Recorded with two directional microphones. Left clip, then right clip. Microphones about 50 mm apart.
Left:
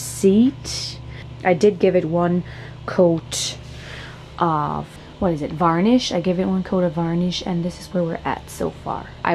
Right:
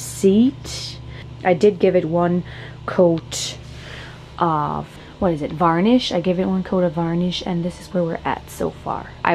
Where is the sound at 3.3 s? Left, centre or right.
Centre.